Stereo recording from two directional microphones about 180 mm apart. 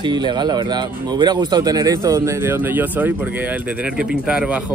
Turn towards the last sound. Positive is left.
turn(degrees=-5)  # may be behind; listen again after turning